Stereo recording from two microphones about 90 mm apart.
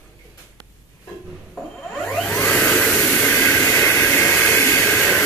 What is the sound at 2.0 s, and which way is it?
Music, 5° left (ahead or behind).